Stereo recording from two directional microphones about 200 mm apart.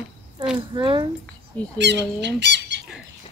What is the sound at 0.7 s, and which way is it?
Speech, 25° right (ahead or behind).